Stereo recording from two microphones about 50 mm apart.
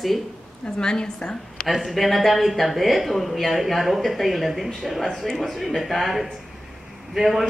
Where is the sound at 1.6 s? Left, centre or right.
Centre.